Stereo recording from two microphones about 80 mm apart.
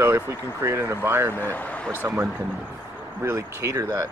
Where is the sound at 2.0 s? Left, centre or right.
Right.